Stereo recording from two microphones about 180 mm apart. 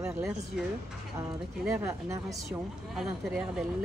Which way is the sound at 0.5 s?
5° right (ahead or behind).